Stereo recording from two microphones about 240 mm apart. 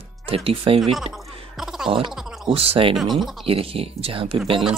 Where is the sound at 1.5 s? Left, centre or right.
Centre.